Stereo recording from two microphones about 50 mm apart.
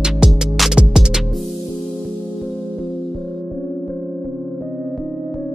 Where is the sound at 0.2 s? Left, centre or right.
Centre.